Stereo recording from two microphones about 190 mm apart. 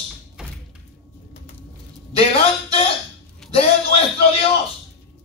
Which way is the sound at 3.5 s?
30° left (ahead or behind).